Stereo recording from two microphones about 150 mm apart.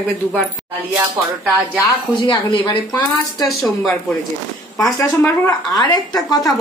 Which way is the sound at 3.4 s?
Centre (ahead or behind).